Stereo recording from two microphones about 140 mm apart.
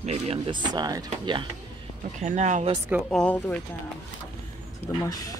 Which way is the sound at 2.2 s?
55° right (ahead or behind).